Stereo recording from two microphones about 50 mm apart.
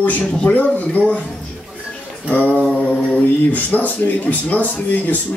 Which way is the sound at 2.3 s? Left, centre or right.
Left.